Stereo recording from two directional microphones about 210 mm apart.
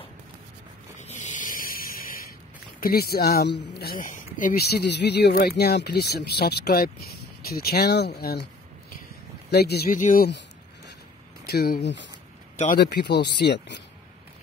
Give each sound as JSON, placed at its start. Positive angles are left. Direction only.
{"t": 0.9, "sound": "a sound", "side_deg": 35}
{"t": 2.8, "sound": "speech", "side_deg": 45}
{"t": 9.5, "sound": "speech", "side_deg": 50}
{"t": 11.4, "sound": "speech", "side_deg": 50}